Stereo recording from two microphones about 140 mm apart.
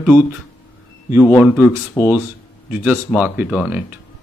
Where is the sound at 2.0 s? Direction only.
25° left (ahead or behind).